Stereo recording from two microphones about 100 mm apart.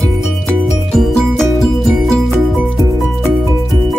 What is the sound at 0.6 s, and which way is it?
Music, centre (ahead or behind).